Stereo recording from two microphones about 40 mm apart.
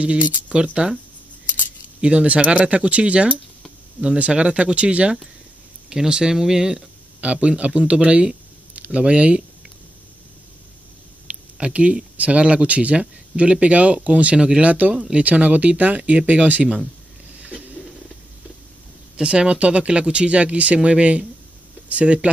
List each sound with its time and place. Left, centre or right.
0.0 s speech: right
2.0 s speech: right
5.9 s speech: centre
7.2 s speech: right
11.3 s a sound: right
11.6 s speech: right
14.6 s speech: right
17.7 s a sound: centre
19.1 s speech: right